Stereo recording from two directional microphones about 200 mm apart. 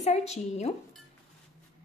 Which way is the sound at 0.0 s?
35° left (ahead or behind).